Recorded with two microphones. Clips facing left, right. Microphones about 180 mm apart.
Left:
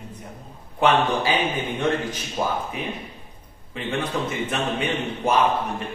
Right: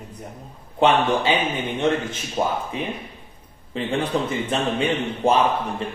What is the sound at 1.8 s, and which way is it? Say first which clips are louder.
A man's voice: right 3 dB; 25° right (ahead or behind).